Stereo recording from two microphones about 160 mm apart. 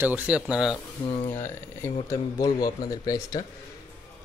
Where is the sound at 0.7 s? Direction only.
30° left (ahead or behind).